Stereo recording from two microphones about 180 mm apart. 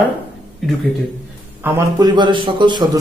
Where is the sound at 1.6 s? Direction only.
20° right (ahead or behind).